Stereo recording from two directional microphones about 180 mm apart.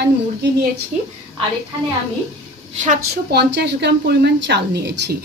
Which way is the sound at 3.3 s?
70° right (ahead or behind).